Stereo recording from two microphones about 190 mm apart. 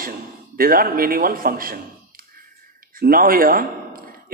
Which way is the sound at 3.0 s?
50° right (ahead or behind).